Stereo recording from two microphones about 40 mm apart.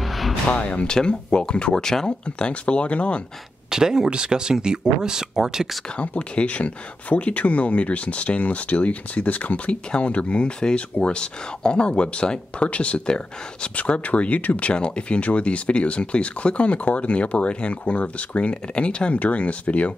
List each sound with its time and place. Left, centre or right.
0.0 s music: centre
0.5 s speech: left; by 2.1 s centre
2.3 s speech: left
3.7 s speech: centre
5.9 s speech: left
14.7 s speech: left